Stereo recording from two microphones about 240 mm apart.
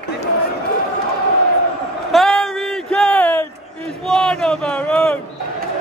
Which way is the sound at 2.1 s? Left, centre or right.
Centre.